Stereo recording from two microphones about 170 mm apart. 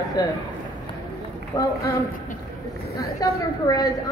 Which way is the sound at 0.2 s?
25° left (ahead or behind).